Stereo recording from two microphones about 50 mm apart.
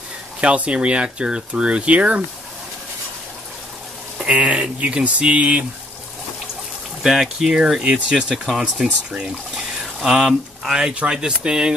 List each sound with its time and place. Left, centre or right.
0.4 s speech: right
4.2 s speech: right
7.0 s speech: centre